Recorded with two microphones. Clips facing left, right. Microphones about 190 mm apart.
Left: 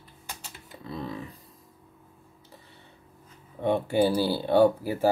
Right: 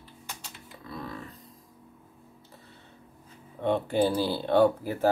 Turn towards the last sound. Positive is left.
turn(degrees=10)  # may be behind; listen again after turning